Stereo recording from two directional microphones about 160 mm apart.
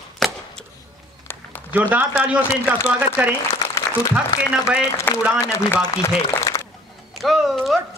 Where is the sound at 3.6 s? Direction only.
20° left (ahead or behind).